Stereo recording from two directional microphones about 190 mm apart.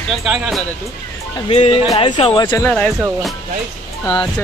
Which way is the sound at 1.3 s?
30° left (ahead or behind).